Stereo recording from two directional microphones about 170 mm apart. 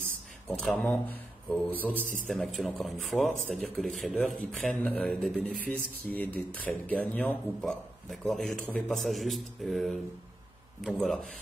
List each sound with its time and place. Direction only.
0.5 s speech: 5° left (ahead or behind)